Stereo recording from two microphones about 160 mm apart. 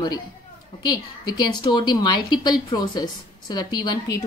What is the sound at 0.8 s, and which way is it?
A woman's voice, 25° left (ahead or behind).